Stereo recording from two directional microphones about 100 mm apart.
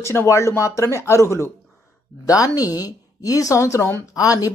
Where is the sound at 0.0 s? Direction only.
25° left (ahead or behind).